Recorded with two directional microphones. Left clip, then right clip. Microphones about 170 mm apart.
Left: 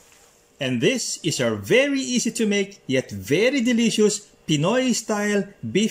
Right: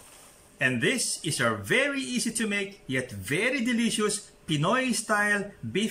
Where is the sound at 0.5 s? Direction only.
25° left (ahead or behind).